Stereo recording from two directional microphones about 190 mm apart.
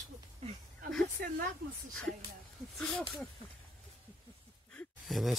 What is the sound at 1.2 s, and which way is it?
Speech, 50° right (ahead or behind).